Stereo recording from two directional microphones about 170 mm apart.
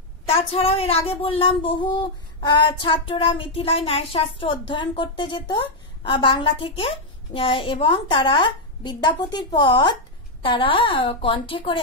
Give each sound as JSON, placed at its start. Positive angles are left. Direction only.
{"t": 0.3, "sound": "a woman's voice", "side_deg": 35}
{"t": 1.8, "sound": "child singing", "side_deg": 25}
{"t": 10.4, "sound": "a woman's voice", "side_deg": 30}